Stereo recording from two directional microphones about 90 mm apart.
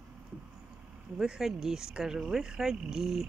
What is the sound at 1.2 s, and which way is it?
Speech, 5° right (ahead or behind).